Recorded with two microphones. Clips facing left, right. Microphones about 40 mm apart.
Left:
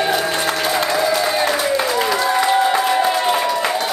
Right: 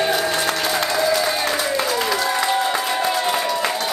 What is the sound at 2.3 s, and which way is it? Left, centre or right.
Music, centre.